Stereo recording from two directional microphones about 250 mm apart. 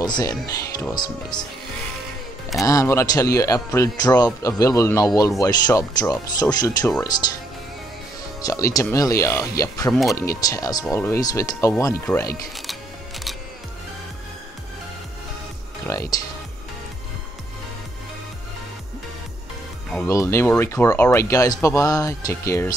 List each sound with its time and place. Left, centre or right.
0.0 s speech: centre
2.6 s speech: centre
8.4 s speech: centre
15.9 s speech: centre
19.9 s speech: centre